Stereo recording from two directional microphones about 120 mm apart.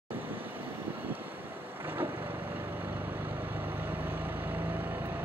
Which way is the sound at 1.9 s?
15° right (ahead or behind).